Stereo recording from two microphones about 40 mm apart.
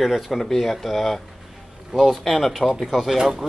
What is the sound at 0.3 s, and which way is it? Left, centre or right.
Speech, centre.